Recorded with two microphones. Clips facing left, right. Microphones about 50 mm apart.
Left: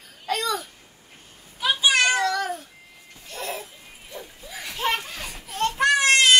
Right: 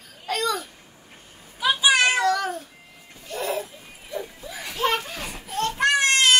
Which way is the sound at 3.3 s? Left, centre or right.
Centre.